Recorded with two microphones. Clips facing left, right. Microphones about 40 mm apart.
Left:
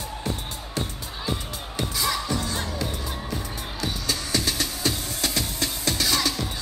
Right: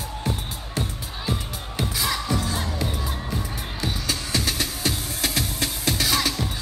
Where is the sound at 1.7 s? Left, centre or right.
Centre.